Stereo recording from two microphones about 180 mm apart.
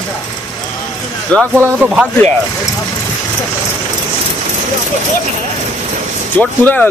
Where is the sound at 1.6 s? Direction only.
5° right (ahead or behind).